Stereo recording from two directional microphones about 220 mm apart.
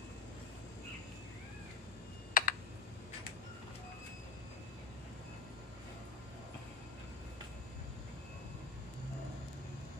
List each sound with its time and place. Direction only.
2.4 s computer keyboard: 40° left (ahead or behind)